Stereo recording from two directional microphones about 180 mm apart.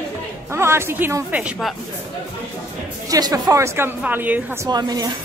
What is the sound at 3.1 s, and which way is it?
A woman's voice, 20° right (ahead or behind).